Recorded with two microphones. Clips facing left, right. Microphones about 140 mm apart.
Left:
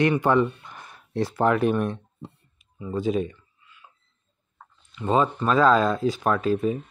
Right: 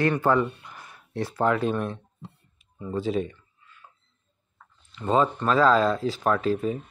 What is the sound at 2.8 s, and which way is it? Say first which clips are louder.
Speech: left 2 dB; 10° left (ahead or behind).